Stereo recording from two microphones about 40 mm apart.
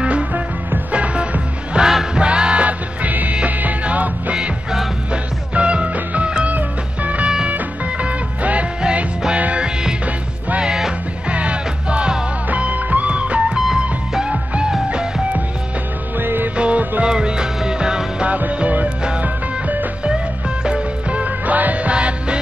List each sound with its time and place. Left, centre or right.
0.9 s music: right
2.6 s music: right
6.5 s music: right
10.6 s music: centre
11.2 s music: right
14.2 s music: right
16.2 s music: right
16.5 s music: right
18.2 s music: right
20.6 s music: right